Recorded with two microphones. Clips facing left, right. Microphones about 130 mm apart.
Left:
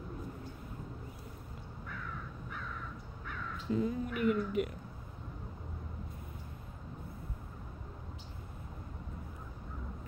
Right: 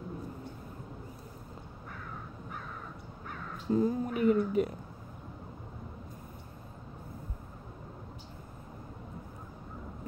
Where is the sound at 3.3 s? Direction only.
40° right (ahead or behind).